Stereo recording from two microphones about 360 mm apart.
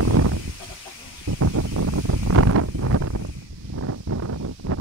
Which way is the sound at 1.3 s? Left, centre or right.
Right.